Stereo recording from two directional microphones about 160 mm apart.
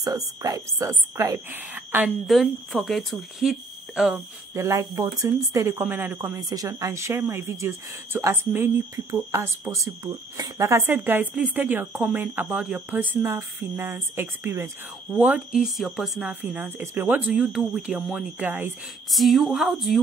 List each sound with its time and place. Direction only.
0.0 s a woman's voice: 20° right (ahead or behind)
1.5 s speech: 10° right (ahead or behind)
2.0 s speech: centre (ahead or behind)
4.6 s speech: 20° right (ahead or behind)
19.0 s speech: centre (ahead or behind)